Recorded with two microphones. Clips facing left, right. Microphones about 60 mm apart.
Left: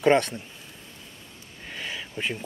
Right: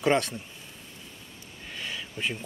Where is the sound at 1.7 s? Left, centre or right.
Centre.